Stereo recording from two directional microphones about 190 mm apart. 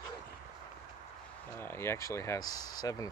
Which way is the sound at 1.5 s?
10° left (ahead or behind).